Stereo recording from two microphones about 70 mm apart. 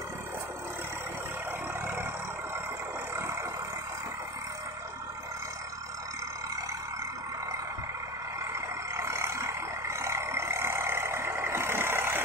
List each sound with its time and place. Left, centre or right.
8.5 s vehicle: right